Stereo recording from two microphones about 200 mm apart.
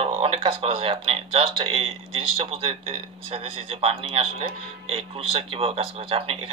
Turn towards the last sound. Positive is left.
turn(degrees=-25)  # may be behind; listen again after turning